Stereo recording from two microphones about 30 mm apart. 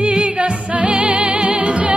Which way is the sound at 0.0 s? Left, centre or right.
Right.